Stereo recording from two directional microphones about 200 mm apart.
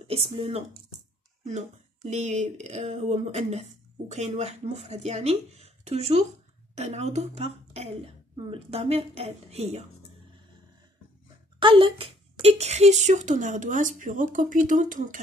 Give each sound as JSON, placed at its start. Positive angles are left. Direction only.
{"t": 0.0, "sound": "speech", "side_deg": -30}
{"t": 2.0, "sound": "a woman's voice", "side_deg": -35}
{"t": 11.6, "sound": "speech", "side_deg": -25}